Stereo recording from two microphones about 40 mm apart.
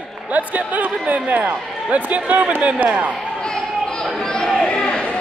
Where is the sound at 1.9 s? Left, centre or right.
Right.